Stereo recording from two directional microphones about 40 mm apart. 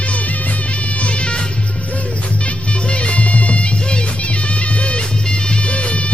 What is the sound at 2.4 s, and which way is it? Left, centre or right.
Music, left.